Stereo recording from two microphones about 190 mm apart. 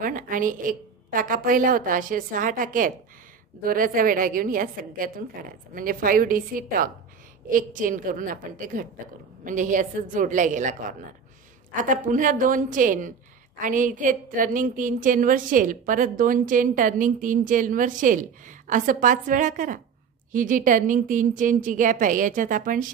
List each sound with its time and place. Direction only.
0.0 s a woman's voice: 45° right (ahead or behind)